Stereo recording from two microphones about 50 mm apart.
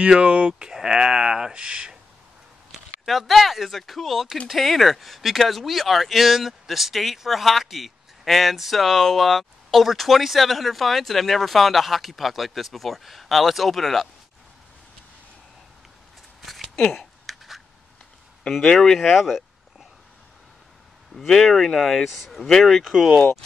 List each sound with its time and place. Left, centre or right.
0.0 s speech: right
3.1 s speech: centre
16.9 s a sound: centre
18.7 s speech: centre
18.9 s a sound: centre
21.1 s speech: centre
22.8 s speech: centre